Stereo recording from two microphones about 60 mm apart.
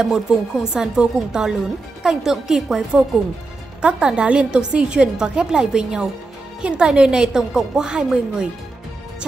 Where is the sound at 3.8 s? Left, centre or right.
Centre.